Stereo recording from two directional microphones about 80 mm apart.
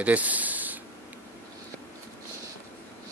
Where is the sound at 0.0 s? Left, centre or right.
Centre.